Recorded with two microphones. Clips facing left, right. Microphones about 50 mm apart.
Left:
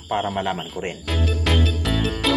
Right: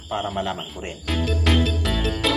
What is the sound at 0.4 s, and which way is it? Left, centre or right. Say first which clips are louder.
Speech: left 2 dB; left.